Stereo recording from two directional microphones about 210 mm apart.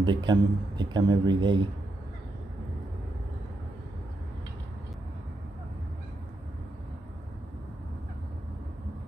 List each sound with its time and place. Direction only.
0.0 s a man's voice: 20° right (ahead or behind)